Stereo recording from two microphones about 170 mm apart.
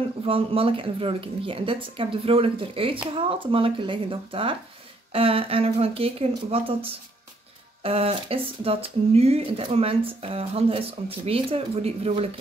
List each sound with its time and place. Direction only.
0.2 s speech: 35° right (ahead or behind)